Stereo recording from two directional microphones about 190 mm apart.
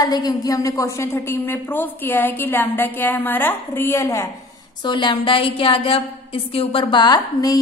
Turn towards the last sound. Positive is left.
turn(degrees=20)  # may be behind; listen again after turning